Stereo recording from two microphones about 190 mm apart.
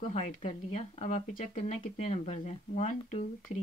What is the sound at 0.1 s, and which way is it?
Speech, 35° left (ahead or behind).